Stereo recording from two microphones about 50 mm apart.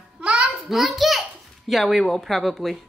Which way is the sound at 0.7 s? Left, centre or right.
Centre.